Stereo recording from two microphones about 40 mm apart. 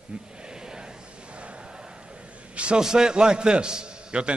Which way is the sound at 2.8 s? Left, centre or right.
Centre.